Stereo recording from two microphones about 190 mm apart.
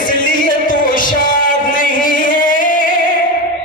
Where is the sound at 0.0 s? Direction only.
45° left (ahead or behind).